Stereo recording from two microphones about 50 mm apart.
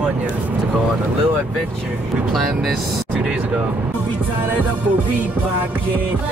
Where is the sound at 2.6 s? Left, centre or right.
Centre.